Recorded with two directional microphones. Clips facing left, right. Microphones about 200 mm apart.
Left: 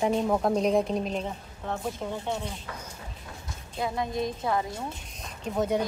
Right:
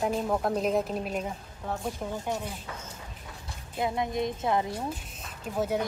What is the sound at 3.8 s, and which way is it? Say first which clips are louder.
Speech: even; 20° right (ahead or behind).